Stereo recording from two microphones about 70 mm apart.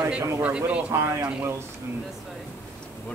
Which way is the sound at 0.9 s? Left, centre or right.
Right.